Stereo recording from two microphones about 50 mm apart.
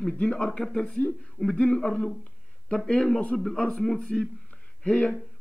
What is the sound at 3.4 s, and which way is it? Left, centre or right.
Speech, centre.